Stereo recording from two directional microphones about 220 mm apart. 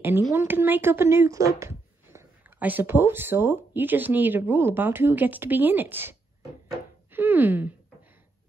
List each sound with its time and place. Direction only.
0.3 s speech: 10° right (ahead or behind)